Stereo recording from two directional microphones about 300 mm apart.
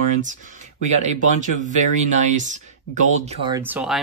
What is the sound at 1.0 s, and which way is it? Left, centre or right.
Speech, right.